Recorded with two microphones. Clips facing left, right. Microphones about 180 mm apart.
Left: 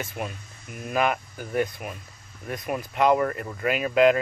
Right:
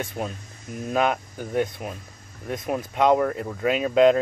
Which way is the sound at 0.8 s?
5° left (ahead or behind).